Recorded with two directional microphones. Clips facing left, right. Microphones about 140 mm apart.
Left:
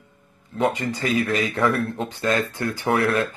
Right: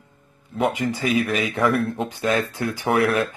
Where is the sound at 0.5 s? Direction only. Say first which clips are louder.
Even; 10° right (ahead or behind).